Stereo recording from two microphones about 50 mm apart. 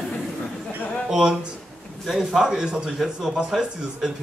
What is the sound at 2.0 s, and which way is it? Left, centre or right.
Speech, centre.